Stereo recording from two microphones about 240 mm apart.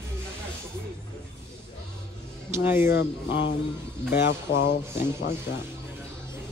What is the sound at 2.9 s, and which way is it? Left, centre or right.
Speech, left.